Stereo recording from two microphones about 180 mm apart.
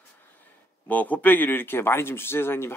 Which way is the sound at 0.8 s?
10° left (ahead or behind).